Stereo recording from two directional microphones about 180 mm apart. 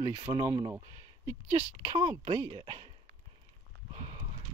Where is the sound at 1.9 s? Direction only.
25° right (ahead or behind).